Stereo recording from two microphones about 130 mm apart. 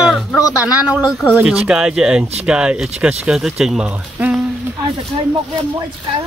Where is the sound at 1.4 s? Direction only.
5° right (ahead or behind).